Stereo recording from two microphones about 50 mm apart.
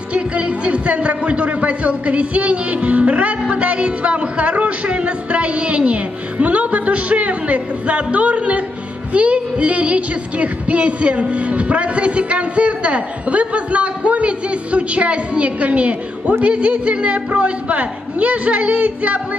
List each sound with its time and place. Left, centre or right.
0.1 s music: right